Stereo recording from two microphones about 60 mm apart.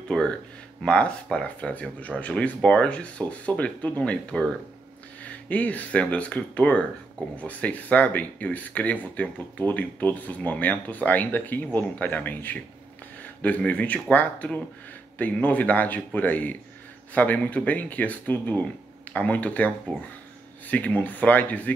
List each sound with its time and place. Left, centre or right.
0.1 s speech: centre